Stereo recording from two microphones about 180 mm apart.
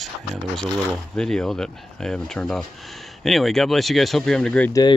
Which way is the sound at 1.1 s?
5° left (ahead or behind).